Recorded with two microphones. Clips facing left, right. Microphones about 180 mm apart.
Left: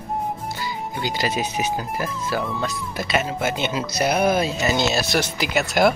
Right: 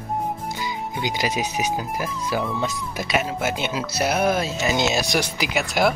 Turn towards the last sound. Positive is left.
turn(degrees=0)  # may be behind; listen again after turning